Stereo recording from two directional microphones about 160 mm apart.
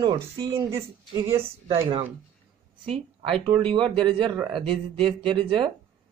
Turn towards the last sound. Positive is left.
turn(degrees=-35)  # may be behind; listen again after turning